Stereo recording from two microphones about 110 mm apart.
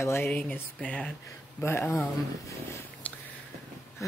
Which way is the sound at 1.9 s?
25° left (ahead or behind).